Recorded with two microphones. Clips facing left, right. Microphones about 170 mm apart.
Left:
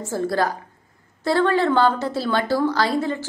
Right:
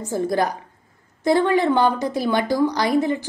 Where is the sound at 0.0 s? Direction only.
15° right (ahead or behind).